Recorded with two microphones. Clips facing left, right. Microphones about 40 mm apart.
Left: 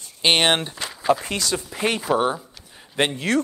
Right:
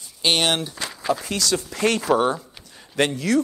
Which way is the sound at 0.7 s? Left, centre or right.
Centre.